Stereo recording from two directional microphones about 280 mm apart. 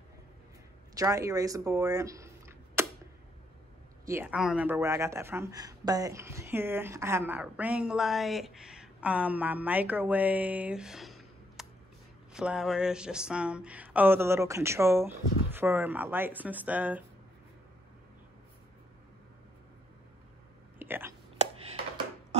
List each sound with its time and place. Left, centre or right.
0.9 s speech: centre
4.0 s speech: centre
20.8 s speech: centre
21.4 s computer keyboard: right